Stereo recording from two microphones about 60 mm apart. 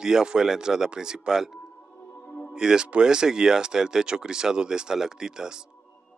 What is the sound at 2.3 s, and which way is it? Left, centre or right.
Music, left.